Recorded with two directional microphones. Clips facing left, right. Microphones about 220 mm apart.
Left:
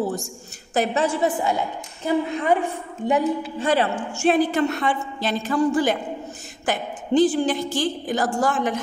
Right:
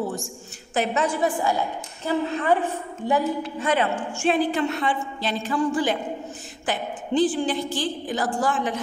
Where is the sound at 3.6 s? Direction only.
30° left (ahead or behind).